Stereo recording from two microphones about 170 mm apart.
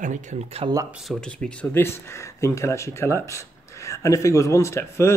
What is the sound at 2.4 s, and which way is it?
Speech, 15° left (ahead or behind).